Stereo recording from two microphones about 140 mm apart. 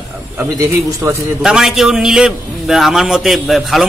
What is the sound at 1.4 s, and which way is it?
A man's voice, 5° right (ahead or behind).